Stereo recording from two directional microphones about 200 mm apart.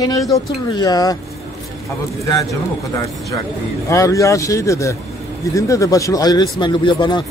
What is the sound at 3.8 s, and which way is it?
Speech, 15° left (ahead or behind).